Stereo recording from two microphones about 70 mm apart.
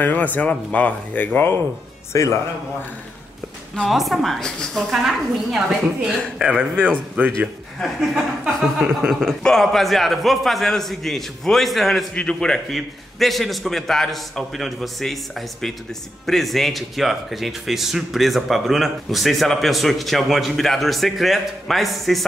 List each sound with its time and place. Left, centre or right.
0.0 s speech: left
2.1 s a man's voice: left
3.9 s a man's voice: centre
4.9 s a woman's voice: centre; by 7.3 s right
7.8 s a man's voice: centre
8.7 s a woman's voice: centre
9.1 s a man's voice: centre
12.1 s a man's voice: centre
12.7 s a man's voice: centre